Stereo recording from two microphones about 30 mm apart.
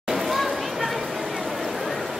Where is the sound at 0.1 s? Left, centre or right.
Centre.